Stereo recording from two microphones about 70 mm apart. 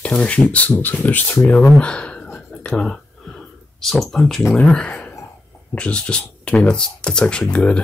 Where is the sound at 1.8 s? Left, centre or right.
Centre.